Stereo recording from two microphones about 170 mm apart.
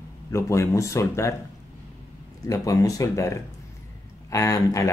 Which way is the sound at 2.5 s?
20° left (ahead or behind).